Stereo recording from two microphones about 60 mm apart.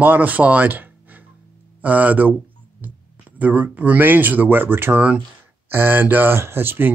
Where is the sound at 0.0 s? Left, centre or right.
Right.